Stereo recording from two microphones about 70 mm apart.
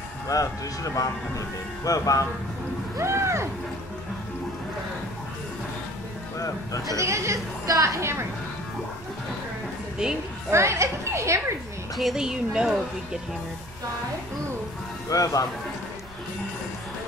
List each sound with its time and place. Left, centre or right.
0.3 s speech: left
3.0 s a woman's voice: right
6.3 s speech: left
7.0 s a woman's voice: right
10.0 s a woman's voice: centre
10.5 s a woman's voice: right
12.0 s a woman's voice: centre
15.0 s speech: left